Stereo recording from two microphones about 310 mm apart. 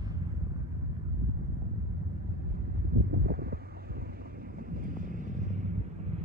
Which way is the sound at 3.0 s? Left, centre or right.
Right.